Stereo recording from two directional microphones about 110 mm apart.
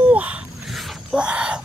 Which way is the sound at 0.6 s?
Centre (ahead or behind).